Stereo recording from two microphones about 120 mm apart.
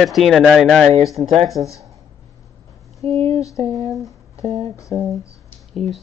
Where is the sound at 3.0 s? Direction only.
55° right (ahead or behind).